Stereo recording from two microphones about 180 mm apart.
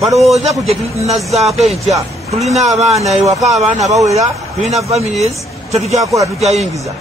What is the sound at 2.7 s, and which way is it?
A man's voice, 35° right (ahead or behind).